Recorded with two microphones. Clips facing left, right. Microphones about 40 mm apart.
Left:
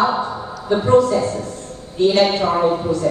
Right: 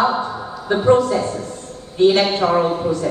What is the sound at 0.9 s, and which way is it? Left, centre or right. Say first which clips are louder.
Speech: even; right.